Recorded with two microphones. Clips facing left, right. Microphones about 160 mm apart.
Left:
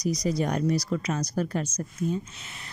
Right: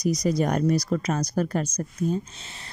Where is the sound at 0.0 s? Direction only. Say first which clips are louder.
Right 3 dB; 45° right (ahead or behind).